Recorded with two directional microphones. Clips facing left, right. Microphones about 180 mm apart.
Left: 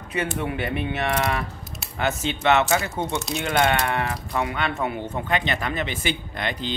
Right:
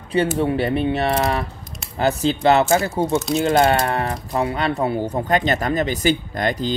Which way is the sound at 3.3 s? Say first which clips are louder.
Right 5 dB; 35° right (ahead or behind).